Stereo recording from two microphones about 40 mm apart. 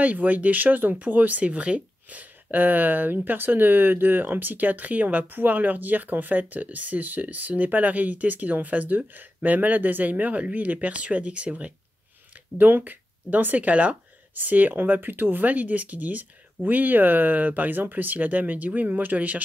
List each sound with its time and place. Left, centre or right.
0.0 s speech: right
1.4 s speech: right
12.5 s speech: right
15.4 s speech: right